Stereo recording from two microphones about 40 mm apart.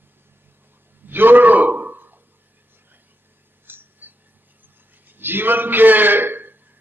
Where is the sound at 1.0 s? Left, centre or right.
Right.